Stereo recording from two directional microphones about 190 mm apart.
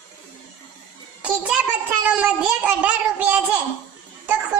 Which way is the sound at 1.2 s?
5° right (ahead or behind).